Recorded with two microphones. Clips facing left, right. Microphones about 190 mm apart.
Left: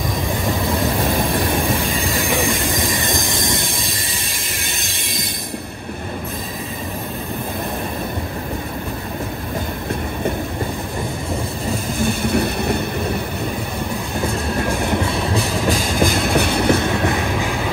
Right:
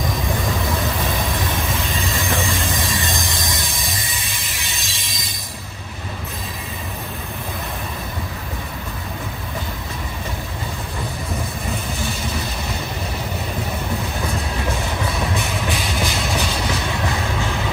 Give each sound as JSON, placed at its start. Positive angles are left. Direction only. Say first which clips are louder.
{"t": 2.1, "sound": "train", "louder": "left 3 dB", "side_deg": 15}
{"t": 4.6, "sound": "music", "louder": "left 3 dB", "side_deg": 55}
{"t": 11.9, "sound": "train", "louder": "left 7 dB", "side_deg": 55}
{"t": 14.7, "sound": "train", "louder": "left 4 dB", "side_deg": 55}
{"t": 15.3, "sound": "train", "louder": "left 5 dB", "side_deg": 45}